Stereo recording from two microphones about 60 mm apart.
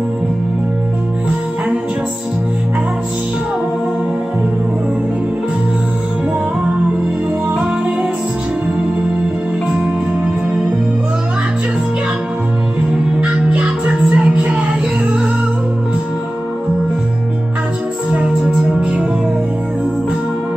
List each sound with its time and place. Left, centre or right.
9.7 s music: centre
13.2 s music: centre
18.1 s music: centre